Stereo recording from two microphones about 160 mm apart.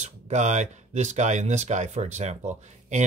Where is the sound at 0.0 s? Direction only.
45° right (ahead or behind).